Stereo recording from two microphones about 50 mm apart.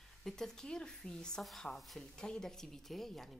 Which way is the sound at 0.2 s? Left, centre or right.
Centre.